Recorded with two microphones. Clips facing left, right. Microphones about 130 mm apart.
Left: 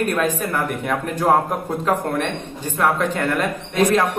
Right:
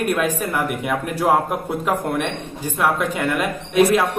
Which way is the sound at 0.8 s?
10° right (ahead or behind).